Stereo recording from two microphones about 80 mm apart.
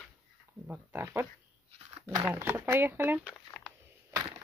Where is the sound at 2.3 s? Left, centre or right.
Right.